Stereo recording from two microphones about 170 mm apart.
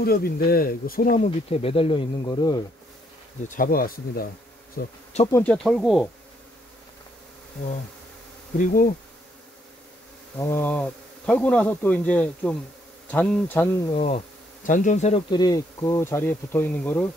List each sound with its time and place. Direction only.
0.0 s speech: 65° left (ahead or behind); by 2.6 s 25° left (ahead or behind)
3.4 s speech: 55° left (ahead or behind)
5.3 s speech: 10° left (ahead or behind)
8.5 s speech: 55° left (ahead or behind)
10.3 s speech: 20° left (ahead or behind)
13.9 s speech: 40° left (ahead or behind)
15.2 s speech: 25° left (ahead or behind)